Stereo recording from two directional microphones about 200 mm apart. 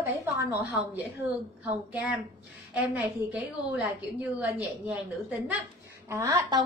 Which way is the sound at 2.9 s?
5° right (ahead or behind).